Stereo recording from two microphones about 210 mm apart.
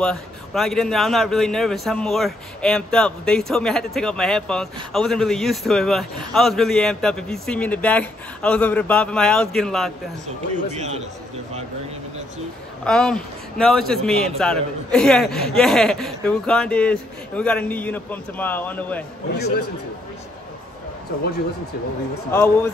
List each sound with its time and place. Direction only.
0.0 s a man's voice: centre (ahead or behind)
10.2 s speech: 35° right (ahead or behind)
12.8 s a man's voice: centre (ahead or behind)
22.3 s a man's voice: 10° left (ahead or behind)